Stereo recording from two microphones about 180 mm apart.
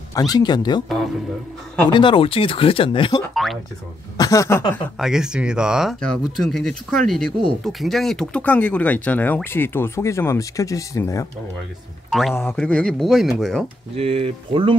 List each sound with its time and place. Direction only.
0.1 s speech: 20° left (ahead or behind)
1.9 s speech: 25° left (ahead or behind)
3.4 s speech: centre (ahead or behind)
4.2 s speech: 15° left (ahead or behind)
4.9 s speech: 5° right (ahead or behind); by 11.2 s 15° left (ahead or behind)
12.1 s a man's voice: centre (ahead or behind)
13.9 s speech: 35° right (ahead or behind)